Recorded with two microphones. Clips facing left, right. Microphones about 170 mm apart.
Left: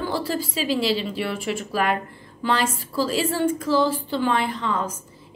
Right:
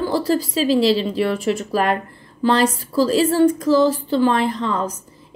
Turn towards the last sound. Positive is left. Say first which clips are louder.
# right 4 dB
turn(degrees=-35)  # may be behind; listen again after turning